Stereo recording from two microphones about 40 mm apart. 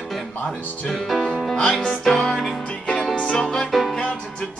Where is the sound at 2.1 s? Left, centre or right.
Centre.